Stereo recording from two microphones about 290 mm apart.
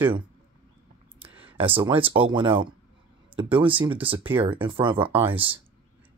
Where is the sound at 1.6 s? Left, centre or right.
Centre.